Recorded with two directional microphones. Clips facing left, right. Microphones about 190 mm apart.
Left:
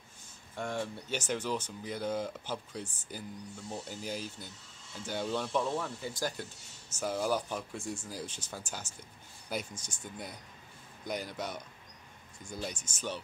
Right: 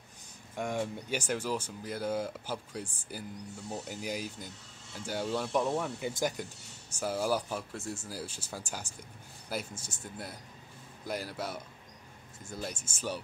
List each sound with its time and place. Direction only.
0.6 s speech: 10° right (ahead or behind)